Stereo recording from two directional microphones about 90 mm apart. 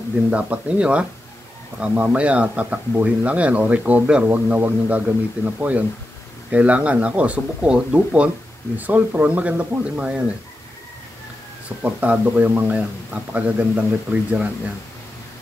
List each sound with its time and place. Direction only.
0.3 s speech: 15° right (ahead or behind)
11.8 s speech: 15° right (ahead or behind)